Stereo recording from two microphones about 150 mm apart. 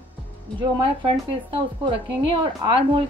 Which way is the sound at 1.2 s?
35° right (ahead or behind).